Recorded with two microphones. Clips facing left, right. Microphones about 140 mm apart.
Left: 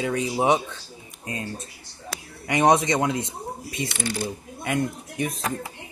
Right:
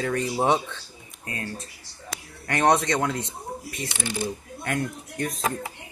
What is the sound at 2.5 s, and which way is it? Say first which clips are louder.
Speech: left 2 dB; 15° left (ahead or behind).